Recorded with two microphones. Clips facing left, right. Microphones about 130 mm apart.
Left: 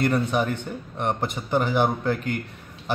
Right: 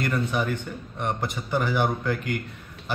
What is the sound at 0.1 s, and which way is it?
Speech, 50° left (ahead or behind).